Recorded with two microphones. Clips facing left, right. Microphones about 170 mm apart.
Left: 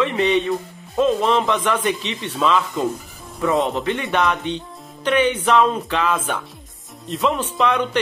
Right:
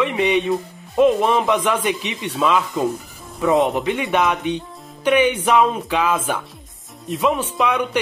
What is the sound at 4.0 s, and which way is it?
Speech, 5° right (ahead or behind).